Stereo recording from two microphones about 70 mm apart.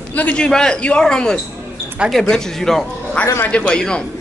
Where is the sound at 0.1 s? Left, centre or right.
Centre.